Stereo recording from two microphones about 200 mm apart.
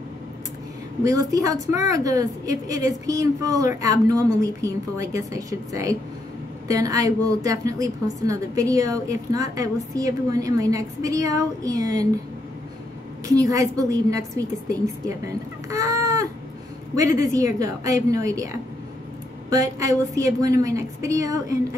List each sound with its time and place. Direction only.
1.0 s a woman's voice: 15° right (ahead or behind)
13.3 s a woman's voice: 15° right (ahead or behind)
15.0 s a sound: 15° right (ahead or behind)
17.2 s a woman's voice: 15° right (ahead or behind)